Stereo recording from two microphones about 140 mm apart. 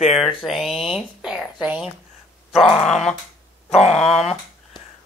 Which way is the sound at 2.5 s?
Centre (ahead or behind).